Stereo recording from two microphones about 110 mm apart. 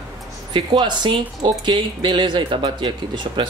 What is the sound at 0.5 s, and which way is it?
Speech, 45° right (ahead or behind).